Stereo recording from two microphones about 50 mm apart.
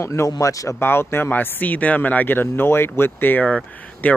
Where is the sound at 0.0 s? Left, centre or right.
Left.